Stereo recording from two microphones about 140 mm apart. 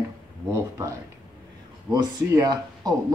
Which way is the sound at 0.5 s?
20° right (ahead or behind).